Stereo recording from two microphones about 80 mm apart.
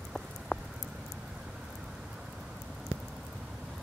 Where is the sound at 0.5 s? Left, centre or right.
Centre.